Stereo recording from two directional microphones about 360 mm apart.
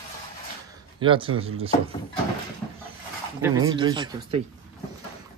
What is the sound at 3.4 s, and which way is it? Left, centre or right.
Speech, centre.